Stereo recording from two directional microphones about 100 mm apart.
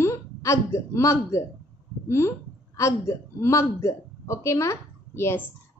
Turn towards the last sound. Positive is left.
turn(degrees=25)  # may be behind; listen again after turning